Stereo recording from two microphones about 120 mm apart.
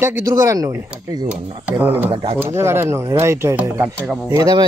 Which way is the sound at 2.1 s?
50° right (ahead or behind).